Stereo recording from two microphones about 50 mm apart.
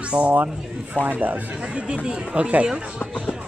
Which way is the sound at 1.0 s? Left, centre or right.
Right.